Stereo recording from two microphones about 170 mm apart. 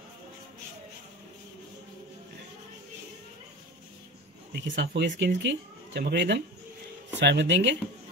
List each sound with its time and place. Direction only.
4.6 s speech: 90° right